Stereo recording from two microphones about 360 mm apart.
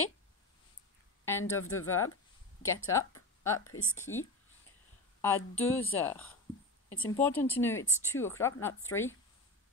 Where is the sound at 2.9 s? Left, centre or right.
Centre.